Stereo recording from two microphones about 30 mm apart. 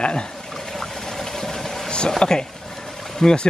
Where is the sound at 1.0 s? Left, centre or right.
Centre.